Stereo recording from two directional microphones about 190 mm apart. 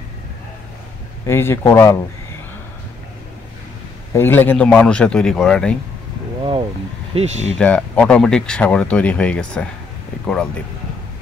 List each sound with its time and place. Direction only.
1.2 s speech: 10° left (ahead or behind)
4.1 s speech: 10° left (ahead or behind)
7.2 s speech: 35° right (ahead or behind)
7.5 s speech: 5° left (ahead or behind)